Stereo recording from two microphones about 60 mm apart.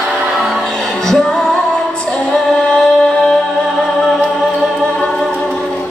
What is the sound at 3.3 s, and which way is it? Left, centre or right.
Music, centre.